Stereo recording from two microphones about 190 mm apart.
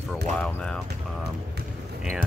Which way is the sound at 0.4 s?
5° left (ahead or behind).